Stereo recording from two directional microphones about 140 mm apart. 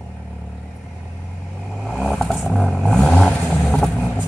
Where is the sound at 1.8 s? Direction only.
Centre (ahead or behind).